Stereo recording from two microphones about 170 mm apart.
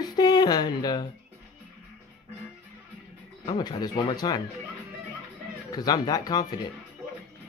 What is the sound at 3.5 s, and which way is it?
Speech, 25° left (ahead or behind).